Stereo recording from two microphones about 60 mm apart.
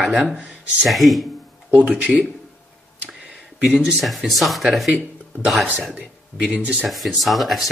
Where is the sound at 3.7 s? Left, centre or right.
Centre.